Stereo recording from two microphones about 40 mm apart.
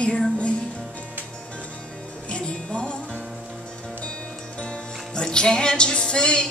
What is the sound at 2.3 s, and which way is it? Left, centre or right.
Music, left.